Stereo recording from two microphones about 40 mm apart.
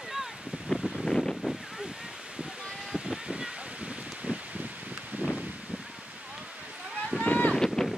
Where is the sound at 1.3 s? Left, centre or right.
Centre.